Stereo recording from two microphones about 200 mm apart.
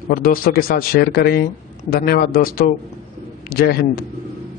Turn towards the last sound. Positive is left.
turn(degrees=50)  # may be behind; listen again after turning